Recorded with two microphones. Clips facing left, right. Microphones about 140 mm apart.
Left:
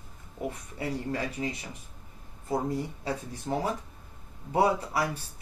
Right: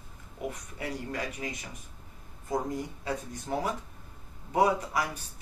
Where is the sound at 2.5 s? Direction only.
30° left (ahead or behind).